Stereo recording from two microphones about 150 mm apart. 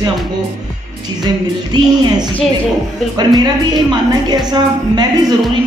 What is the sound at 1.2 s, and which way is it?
A woman's voice, 25° right (ahead or behind).